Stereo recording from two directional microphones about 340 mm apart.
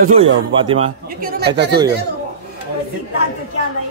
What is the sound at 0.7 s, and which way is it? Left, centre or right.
Speech, centre.